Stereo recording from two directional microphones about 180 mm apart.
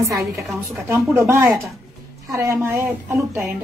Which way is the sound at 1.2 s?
15° right (ahead or behind).